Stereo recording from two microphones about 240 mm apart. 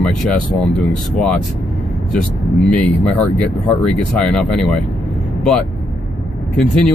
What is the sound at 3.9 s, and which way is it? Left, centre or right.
Speech, centre.